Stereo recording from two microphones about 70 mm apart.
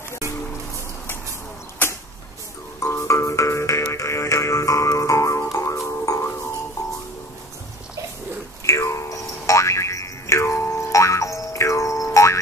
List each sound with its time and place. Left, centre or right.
2.8 s music: left
8.6 s boing: left